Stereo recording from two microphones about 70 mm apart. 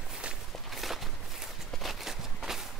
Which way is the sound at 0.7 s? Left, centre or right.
Centre.